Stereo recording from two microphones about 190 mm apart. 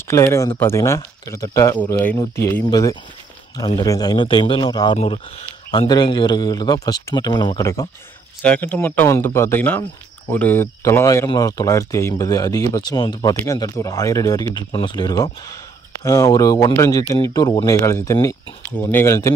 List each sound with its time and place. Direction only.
0.1 s speech: 15° left (ahead or behind)